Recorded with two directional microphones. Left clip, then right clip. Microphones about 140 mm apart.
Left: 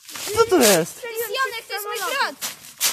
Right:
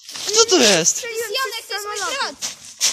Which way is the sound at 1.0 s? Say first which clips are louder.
Right 2 dB; 75° right (ahead or behind).